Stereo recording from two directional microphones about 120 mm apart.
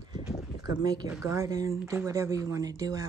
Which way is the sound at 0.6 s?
30° right (ahead or behind).